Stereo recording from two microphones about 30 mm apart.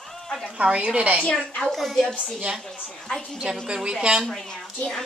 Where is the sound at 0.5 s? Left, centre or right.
Right.